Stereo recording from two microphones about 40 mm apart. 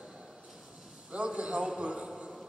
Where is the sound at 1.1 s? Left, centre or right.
Right.